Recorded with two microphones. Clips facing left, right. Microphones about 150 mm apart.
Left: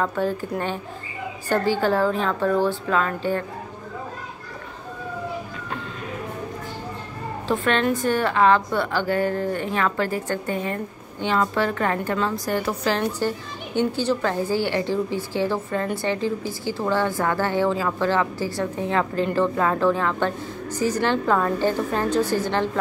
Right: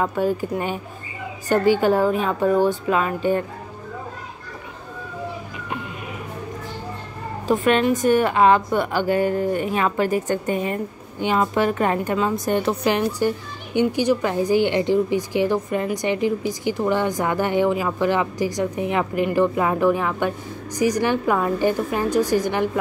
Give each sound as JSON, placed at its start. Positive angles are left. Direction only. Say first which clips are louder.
{"t": 0.0, "sound": "a woman's voice", "louder": "right 2 dB", "side_deg": -15}
{"t": 7.4, "sound": "a woman's voice", "louder": "right 4 dB", "side_deg": -15}